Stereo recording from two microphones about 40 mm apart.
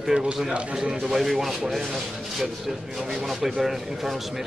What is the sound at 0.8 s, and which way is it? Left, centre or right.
Speech, centre.